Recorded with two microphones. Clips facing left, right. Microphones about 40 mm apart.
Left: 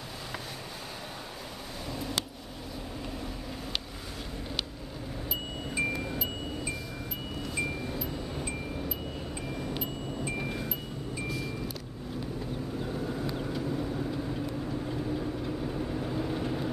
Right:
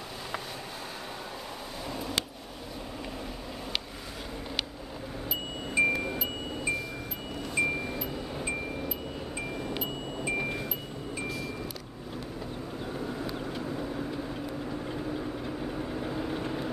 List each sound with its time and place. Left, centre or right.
1.9 s a sound: centre
5.7 s music: centre
7.5 s wind chime: centre
9.5 s music: right
12.8 s vehicle: centre